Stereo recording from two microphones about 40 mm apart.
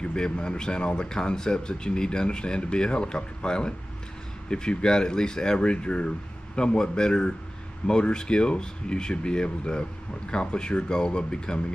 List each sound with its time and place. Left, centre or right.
0.0 s speech: left
5.6 s speech: left